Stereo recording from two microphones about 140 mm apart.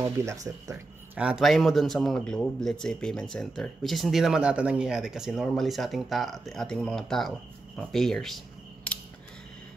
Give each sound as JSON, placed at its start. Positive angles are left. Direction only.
{"t": 0.0, "sound": "speech", "side_deg": -20}
{"t": 1.1, "sound": "a man's voice", "side_deg": -5}